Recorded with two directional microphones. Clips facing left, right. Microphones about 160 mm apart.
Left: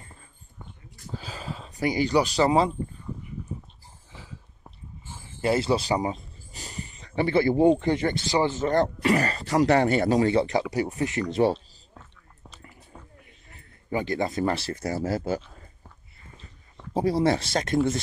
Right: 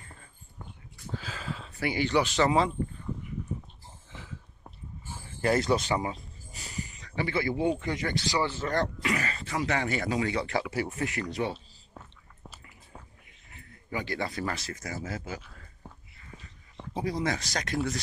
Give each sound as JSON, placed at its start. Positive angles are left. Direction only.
{"t": 0.9, "sound": "a sound", "side_deg": 35}
{"t": 1.8, "sound": "speech", "side_deg": 40}
{"t": 5.4, "sound": "speech", "side_deg": 30}
{"t": 6.5, "sound": "a sound", "side_deg": 30}
{"t": 7.8, "sound": "speech", "side_deg": 30}
{"t": 9.1, "sound": "speech", "side_deg": 35}
{"t": 12.4, "sound": "a sound", "side_deg": -5}
{"t": 13.8, "sound": "speech", "side_deg": 25}
{"t": 16.9, "sound": "speech", "side_deg": 30}